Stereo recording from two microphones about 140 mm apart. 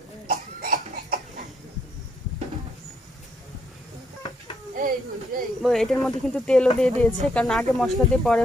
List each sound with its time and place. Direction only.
0.3 s cough: 90° right; by 1.5 s 75° right (ahead or behind)
4.7 s speech: 85° right
5.6 s speech: centre (ahead or behind)